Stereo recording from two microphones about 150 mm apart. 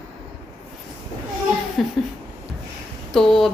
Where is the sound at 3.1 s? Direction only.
5° left (ahead or behind).